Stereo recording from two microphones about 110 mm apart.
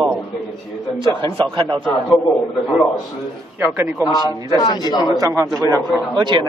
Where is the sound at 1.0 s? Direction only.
45° right (ahead or behind).